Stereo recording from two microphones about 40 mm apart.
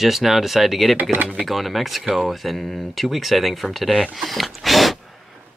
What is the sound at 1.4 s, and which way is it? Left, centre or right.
Speech, centre.